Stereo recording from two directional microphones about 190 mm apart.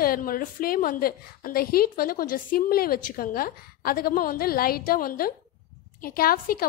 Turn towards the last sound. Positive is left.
turn(degrees=50)  # may be behind; listen again after turning